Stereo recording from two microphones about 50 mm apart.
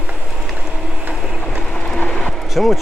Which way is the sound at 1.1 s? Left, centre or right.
Centre.